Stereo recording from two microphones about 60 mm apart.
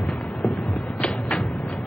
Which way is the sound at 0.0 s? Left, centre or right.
Centre.